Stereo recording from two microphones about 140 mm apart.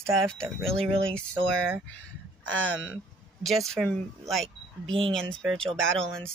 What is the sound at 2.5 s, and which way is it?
Speech, 15° left (ahead or behind).